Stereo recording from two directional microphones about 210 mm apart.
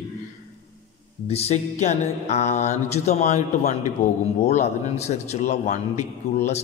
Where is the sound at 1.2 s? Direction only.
30° left (ahead or behind).